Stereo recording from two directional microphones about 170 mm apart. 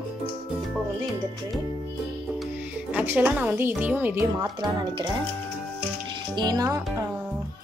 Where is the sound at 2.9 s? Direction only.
10° right (ahead or behind); by 5.1 s 25° right (ahead or behind).